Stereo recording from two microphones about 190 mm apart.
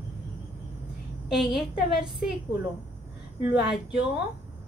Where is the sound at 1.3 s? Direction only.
Centre (ahead or behind).